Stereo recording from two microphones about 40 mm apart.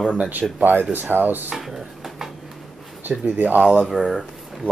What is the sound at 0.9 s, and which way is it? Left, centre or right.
Speech, right.